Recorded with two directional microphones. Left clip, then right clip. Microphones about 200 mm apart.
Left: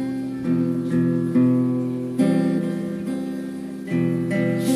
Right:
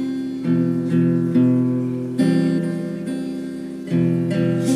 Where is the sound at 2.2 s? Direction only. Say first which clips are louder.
Right 1 dB; 20° right (ahead or behind).